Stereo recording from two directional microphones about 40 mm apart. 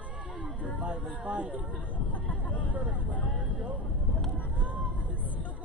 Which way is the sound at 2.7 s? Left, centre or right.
Right.